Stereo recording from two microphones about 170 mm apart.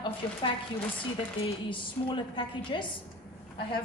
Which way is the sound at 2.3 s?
30° left (ahead or behind).